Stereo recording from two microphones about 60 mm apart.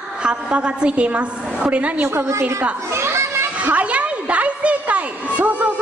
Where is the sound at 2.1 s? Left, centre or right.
Right.